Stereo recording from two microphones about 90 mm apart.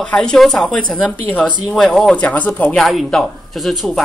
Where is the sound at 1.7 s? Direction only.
5° left (ahead or behind).